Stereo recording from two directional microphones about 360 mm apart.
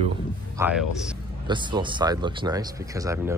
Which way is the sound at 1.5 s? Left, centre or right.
Centre.